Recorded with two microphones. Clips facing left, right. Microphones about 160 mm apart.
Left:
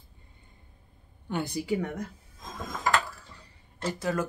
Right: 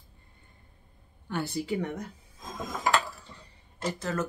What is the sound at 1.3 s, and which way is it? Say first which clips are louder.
Speech: left 1 dB; 15° left (ahead or behind).